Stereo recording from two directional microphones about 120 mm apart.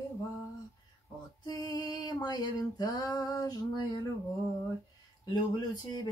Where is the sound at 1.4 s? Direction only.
30° left (ahead or behind).